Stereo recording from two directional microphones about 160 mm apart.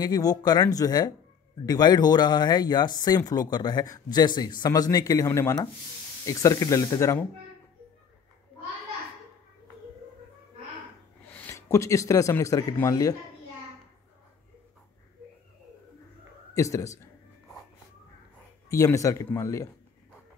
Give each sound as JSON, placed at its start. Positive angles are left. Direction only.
{"t": 0.0, "sound": "speech", "side_deg": 25}
{"t": 11.3, "sound": "speech", "side_deg": 15}
{"t": 16.5, "sound": "speech", "side_deg": 20}
{"t": 18.7, "sound": "speech", "side_deg": 20}